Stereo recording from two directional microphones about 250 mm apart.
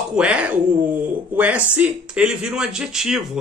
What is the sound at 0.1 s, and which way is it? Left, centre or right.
Speech, centre.